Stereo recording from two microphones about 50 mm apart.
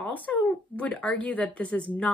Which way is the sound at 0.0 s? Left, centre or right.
Left.